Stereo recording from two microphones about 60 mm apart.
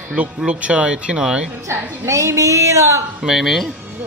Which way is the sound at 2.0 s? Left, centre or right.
Right.